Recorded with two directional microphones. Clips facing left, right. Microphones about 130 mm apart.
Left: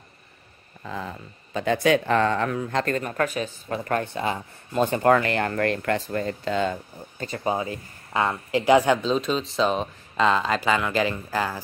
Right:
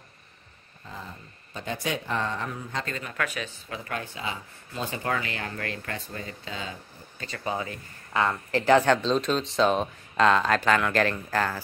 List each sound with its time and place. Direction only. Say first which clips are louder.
0.8 s speech: left 8 dB; 90° left; by 6.8 s 65° left (ahead or behind)
7.2 s speech: left 5 dB; 25° left (ahead or behind)